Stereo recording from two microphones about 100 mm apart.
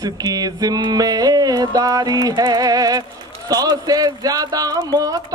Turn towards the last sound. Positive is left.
turn(degrees=-40)  # may be behind; listen again after turning